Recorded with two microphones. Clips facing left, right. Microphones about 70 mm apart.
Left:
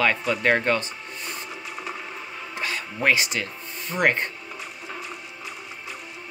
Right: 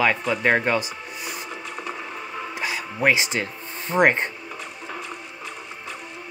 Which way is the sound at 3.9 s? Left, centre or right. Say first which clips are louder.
Right 4 dB; right.